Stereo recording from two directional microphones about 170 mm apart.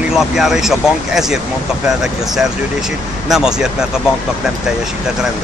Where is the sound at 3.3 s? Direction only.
5° right (ahead or behind).